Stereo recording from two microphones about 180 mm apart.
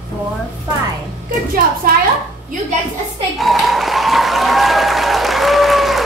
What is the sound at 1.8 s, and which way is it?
Speech, 55° right (ahead or behind).